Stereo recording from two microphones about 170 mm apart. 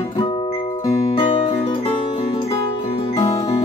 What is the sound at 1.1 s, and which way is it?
Music, 35° left (ahead or behind).